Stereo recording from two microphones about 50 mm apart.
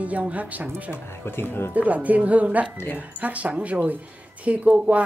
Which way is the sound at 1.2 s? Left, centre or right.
Left.